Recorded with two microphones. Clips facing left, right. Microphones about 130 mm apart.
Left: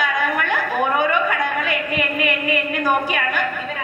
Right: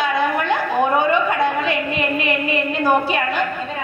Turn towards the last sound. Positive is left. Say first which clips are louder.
# right 3 dB
turn(degrees=-25)  # may be behind; listen again after turning